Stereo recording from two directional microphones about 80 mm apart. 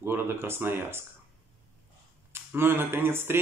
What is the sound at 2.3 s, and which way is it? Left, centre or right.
Speech, right.